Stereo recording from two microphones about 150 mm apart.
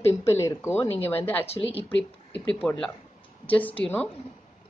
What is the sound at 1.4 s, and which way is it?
Speech, 40° left (ahead or behind).